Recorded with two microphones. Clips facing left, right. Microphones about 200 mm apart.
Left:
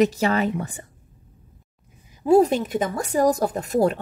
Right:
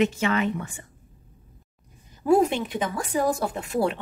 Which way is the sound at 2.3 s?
35° left (ahead or behind).